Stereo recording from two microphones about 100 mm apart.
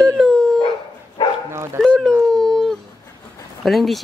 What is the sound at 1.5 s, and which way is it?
Speech, 25° right (ahead or behind).